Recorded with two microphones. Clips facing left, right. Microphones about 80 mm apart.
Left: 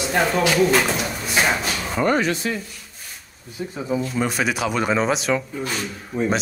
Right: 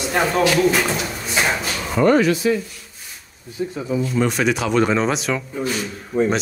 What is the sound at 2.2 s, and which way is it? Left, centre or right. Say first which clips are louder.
Speech: right 5 dB; left.